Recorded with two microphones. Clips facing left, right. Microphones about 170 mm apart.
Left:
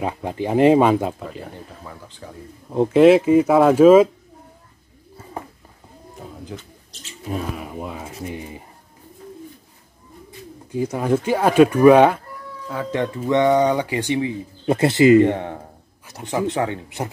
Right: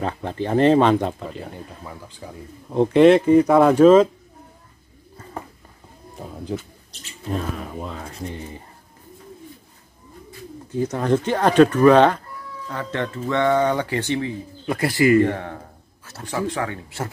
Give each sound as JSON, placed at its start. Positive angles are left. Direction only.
{"t": 0.0, "sound": "speech", "side_deg": 10}
{"t": 1.5, "sound": "speech", "side_deg": -10}
{"t": 2.7, "sound": "speech", "side_deg": 5}
{"t": 6.5, "sound": "speech", "side_deg": -30}
{"t": 7.2, "sound": "speech", "side_deg": 10}
{"t": 10.7, "sound": "speech", "side_deg": 10}